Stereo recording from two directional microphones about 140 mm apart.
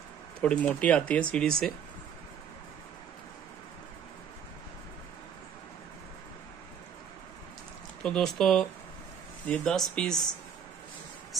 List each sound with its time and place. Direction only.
0.4 s speech: 10° left (ahead or behind)
8.0 s speech: 5° left (ahead or behind)